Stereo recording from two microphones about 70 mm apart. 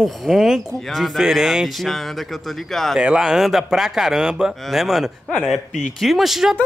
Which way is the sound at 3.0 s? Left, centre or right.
Centre.